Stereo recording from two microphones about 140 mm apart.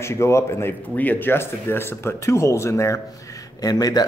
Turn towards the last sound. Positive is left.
turn(degrees=25)  # may be behind; listen again after turning